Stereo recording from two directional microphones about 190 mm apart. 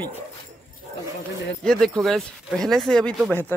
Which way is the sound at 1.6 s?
Centre (ahead or behind).